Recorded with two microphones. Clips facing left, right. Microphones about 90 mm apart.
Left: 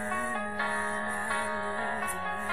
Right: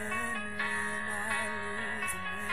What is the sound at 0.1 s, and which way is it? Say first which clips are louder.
Music: left 4 dB; 30° left (ahead or behind).